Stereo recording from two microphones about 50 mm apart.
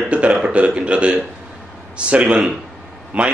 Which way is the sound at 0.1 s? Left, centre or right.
Right.